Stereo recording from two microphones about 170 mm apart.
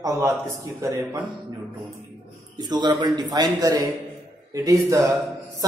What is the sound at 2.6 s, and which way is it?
Speech, 25° right (ahead or behind).